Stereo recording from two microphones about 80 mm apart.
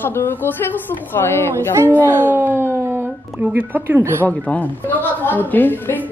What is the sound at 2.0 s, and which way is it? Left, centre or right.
Speech, right.